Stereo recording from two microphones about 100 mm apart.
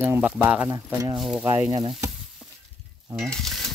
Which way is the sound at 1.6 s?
40° right (ahead or behind).